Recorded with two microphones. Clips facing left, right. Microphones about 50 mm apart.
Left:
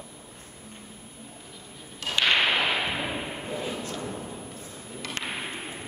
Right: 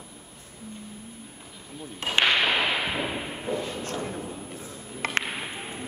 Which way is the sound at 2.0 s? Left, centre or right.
Right.